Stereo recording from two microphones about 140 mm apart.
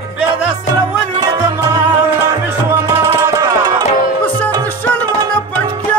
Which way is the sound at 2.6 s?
20° right (ahead or behind).